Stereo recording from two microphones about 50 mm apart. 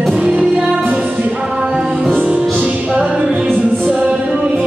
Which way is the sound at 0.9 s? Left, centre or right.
Right.